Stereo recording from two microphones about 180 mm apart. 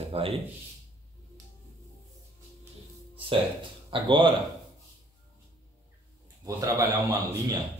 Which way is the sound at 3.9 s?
25° right (ahead or behind).